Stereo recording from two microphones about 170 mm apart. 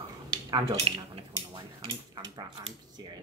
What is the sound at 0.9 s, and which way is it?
Speech, 30° right (ahead or behind).